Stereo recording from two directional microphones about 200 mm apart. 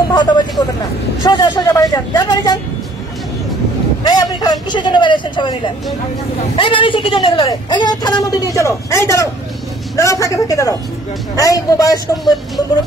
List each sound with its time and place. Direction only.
0.1 s a sound: 20° left (ahead or behind)
1.2 s vehicle: 20° left (ahead or behind)
4.0 s a man's voice: 20° left (ahead or behind)